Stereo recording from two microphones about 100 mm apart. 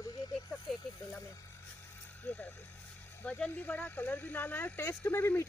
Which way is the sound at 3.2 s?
15° left (ahead or behind).